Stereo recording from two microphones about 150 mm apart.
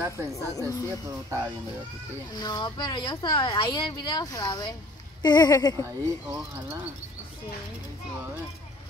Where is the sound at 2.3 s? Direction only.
25° left (ahead or behind).